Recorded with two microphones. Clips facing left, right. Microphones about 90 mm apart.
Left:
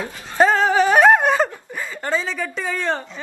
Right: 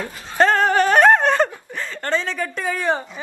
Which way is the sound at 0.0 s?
5° left (ahead or behind).